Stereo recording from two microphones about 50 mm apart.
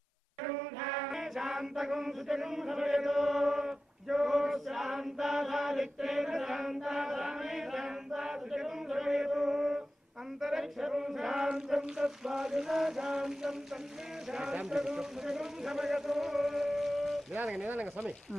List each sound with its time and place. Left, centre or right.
1.1 s chant: centre
10.4 s male singing: centre
11.4 s speech: centre
17.6 s speech: right